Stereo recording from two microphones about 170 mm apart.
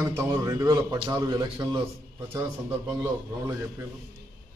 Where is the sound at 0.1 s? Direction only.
15° right (ahead or behind).